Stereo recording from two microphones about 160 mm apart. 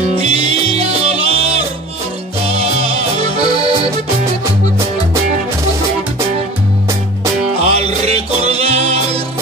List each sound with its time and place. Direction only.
0.1 s music: 40° right (ahead or behind)
3.2 s accordion: 40° right (ahead or behind)
7.7 s music: 40° right (ahead or behind)